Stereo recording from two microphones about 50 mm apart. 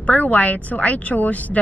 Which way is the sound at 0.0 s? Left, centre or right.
Left.